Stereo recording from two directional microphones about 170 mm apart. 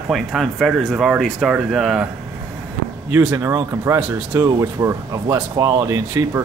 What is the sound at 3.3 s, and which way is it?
Speech, 15° right (ahead or behind).